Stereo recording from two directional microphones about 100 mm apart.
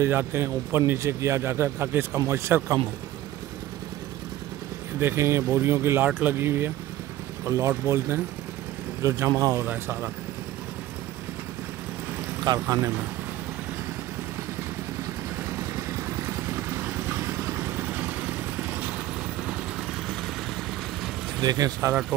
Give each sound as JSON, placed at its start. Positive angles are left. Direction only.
{"t": 0.0, "sound": "a man's voice", "side_deg": -25}
{"t": 4.9, "sound": "a man's voice", "side_deg": -25}
{"t": 9.7, "sound": "a man's voice", "side_deg": -20}
{"t": 12.6, "sound": "speech", "side_deg": -35}
{"t": 15.6, "sound": "vehicle", "side_deg": -30}
{"t": 21.4, "sound": "speech", "side_deg": -40}